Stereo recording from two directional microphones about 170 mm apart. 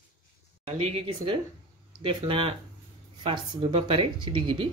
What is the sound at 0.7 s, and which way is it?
A woman's voice, 35° right (ahead or behind).